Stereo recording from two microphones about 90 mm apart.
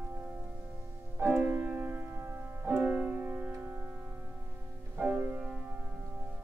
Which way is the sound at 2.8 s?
15° right (ahead or behind).